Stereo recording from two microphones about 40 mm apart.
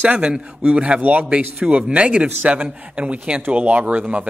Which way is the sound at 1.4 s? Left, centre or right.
Right.